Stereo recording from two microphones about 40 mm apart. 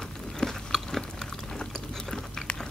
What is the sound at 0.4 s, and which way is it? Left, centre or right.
Chewing, centre.